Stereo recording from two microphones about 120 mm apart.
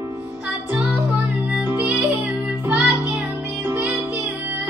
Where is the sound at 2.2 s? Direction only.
5° right (ahead or behind).